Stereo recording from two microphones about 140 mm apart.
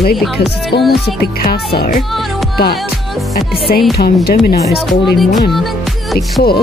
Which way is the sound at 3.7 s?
90° left.